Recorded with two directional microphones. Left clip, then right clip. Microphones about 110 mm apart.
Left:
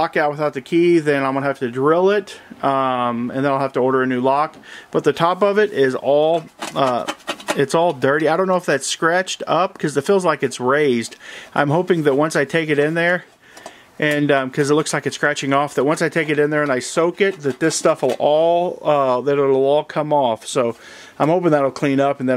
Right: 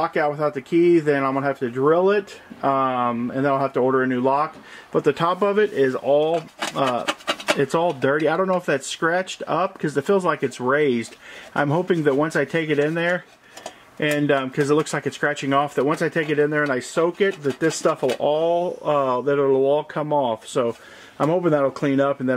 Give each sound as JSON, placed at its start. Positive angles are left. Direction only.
{"t": 0.0, "sound": "speech", "side_deg": 25}
{"t": 7.1, "sound": "rub", "side_deg": 0}
{"t": 7.5, "sound": "speech", "side_deg": 25}